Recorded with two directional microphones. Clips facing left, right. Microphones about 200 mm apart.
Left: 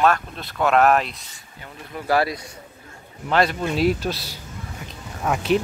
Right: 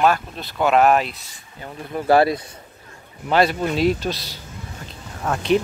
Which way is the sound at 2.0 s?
25° right (ahead or behind).